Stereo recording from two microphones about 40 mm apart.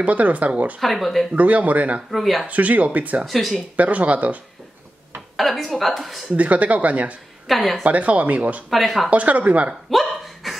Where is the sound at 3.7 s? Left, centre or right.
Right.